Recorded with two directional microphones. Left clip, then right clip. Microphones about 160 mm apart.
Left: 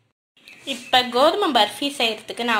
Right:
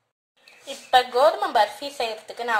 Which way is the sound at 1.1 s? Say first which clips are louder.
Left 1 dB; 20° left (ahead or behind).